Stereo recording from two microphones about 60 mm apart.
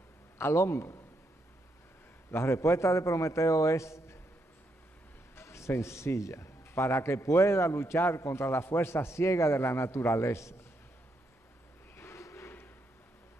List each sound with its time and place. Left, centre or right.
0.4 s a man's voice: left
2.3 s a man's voice: left
5.3 s a man's voice: left
12.0 s a sound: left